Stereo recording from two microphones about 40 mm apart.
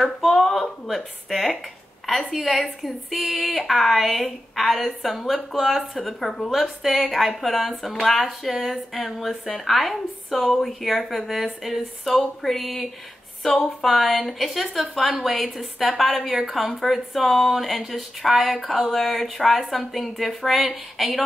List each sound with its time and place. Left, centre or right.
0.3 s a sound: centre
2.3 s a woman's voice: centre
13.5 s speech: centre
13.8 s a woman's voice: centre